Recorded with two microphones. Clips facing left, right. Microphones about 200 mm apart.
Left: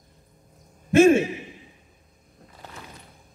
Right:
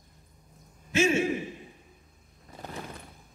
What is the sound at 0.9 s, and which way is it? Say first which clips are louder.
Speech: left 10 dB; 55° left (ahead or behind).